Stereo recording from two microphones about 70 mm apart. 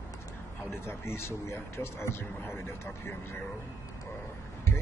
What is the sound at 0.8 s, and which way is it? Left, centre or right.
A man's voice, left.